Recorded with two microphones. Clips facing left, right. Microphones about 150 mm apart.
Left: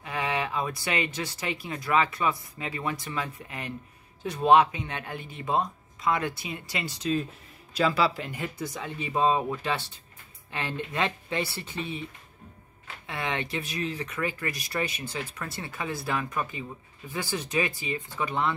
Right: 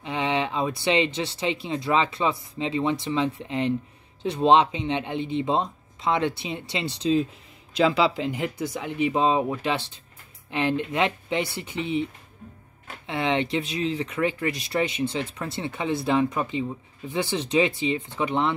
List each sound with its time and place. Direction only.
0.0 s speech: 25° right (ahead or behind)